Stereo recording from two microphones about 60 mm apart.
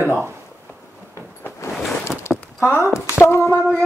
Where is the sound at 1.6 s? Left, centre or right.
Left.